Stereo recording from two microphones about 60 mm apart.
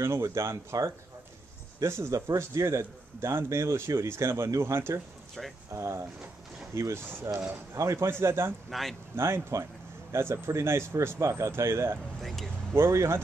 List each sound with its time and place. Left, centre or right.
0.0 s a man's voice: right
8.6 s speech: centre
9.1 s a man's voice: right
12.2 s speech: centre
12.7 s a man's voice: right